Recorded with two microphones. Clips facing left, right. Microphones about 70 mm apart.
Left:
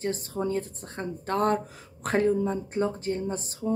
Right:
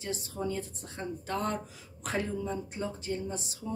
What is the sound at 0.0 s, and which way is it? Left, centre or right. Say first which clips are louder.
A woman's voice: left 6 dB; left.